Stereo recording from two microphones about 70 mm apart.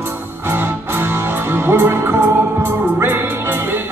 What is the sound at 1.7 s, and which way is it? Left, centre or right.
Music, right.